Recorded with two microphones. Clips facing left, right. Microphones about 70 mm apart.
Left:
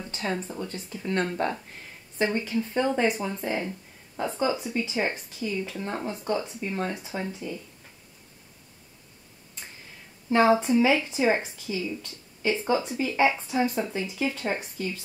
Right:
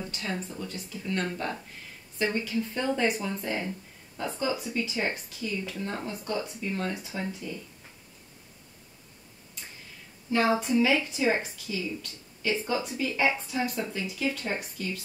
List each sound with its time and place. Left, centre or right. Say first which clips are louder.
0.1 s speech: left 4 dB; left
10.6 s speech: left 3 dB; left